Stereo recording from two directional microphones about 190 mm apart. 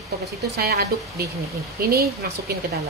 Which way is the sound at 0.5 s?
55° right (ahead or behind).